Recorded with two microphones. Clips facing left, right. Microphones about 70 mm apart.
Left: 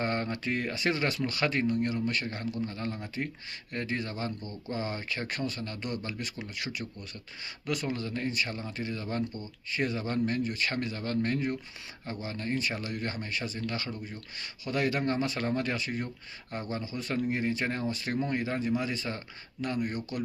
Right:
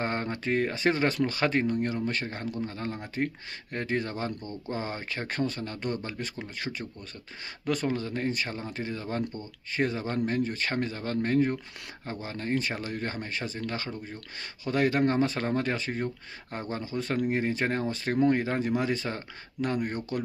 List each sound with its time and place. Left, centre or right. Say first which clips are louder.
0.0 s speech: right 1 dB; right
3.7 s speech: right 3 dB; right
7.6 s speech: right 4 dB; right
10.4 s speech: right 2 dB; right